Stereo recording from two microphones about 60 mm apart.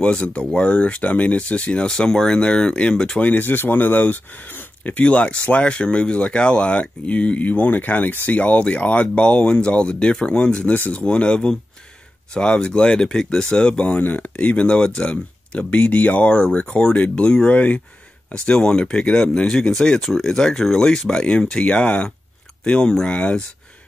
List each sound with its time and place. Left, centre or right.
0.0 s speech: centre
3.2 s speech: left